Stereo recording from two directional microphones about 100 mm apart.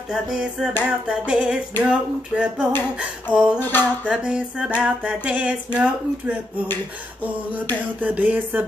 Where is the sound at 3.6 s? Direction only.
20° left (ahead or behind).